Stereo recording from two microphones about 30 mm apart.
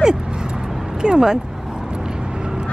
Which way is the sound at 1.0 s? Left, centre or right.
Right.